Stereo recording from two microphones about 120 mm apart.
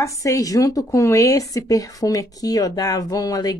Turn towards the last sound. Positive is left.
turn(degrees=30)  # may be behind; listen again after turning